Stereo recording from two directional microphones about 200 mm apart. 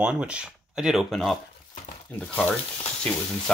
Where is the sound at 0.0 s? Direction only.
5° right (ahead or behind).